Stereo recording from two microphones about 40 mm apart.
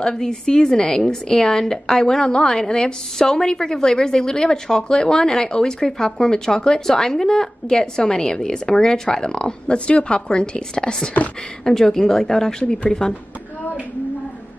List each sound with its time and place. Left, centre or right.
0.0 s a woman's voice: centre